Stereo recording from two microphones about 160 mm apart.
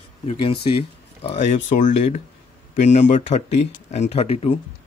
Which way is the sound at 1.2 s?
45° left (ahead or behind).